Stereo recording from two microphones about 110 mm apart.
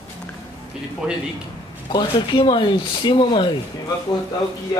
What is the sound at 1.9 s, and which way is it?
Speech, 45° left (ahead or behind).